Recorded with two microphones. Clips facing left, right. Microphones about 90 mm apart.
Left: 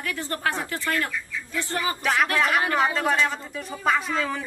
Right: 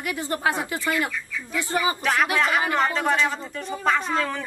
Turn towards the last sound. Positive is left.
turn(degrees=0)  # may be behind; listen again after turning